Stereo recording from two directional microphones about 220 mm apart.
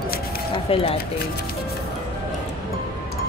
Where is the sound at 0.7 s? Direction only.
25° left (ahead or behind).